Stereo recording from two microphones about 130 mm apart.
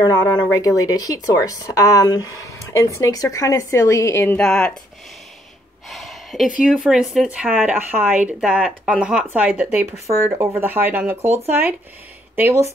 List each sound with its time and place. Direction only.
0.0 s speech: 30° left (ahead or behind)
4.4 s speech: 5° left (ahead or behind)
5.9 s a sound: centre (ahead or behind)
6.6 s speech: 5° right (ahead or behind)
10.0 s speech: 20° right (ahead or behind)
12.4 s speech: 20° right (ahead or behind)